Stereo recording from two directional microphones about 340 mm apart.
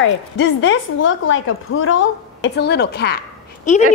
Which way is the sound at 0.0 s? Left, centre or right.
Left.